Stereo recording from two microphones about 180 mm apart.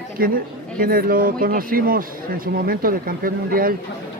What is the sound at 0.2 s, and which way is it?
Speech, 55° right (ahead or behind).